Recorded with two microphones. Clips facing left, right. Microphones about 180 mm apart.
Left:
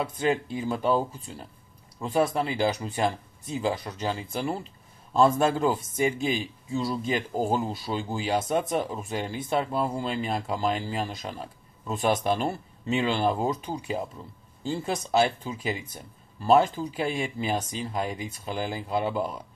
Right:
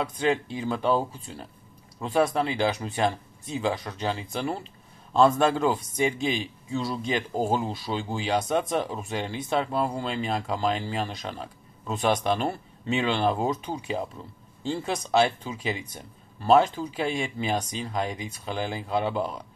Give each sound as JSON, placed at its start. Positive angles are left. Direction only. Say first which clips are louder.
{"t": 0.0, "sound": "speech", "louder": "right 1 dB", "side_deg": 0}